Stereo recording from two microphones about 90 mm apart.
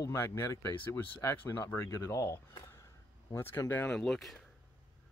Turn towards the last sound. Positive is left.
turn(degrees=0)  # may be behind; listen again after turning